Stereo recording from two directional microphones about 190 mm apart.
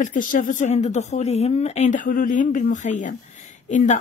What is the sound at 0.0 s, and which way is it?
A woman's voice, 45° left (ahead or behind).